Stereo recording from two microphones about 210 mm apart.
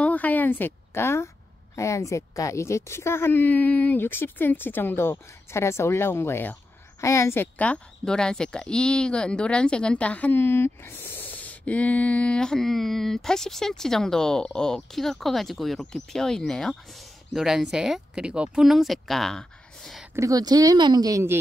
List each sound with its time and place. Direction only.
0.0 s a sound: 10° left (ahead or behind)
1.8 s a woman's voice: 15° left (ahead or behind)
20.2 s speech: 15° right (ahead or behind)